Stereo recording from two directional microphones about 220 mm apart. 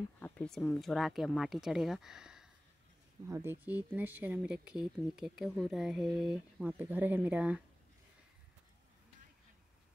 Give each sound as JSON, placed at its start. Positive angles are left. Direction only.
{"t": 0.2, "sound": "speech", "side_deg": 5}